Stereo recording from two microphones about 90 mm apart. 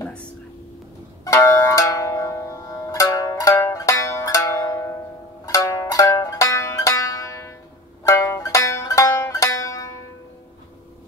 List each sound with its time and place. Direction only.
1.2 s music: 35° left (ahead or behind)
5.4 s zither: 40° left (ahead or behind)
8.1 s music: 35° left (ahead or behind)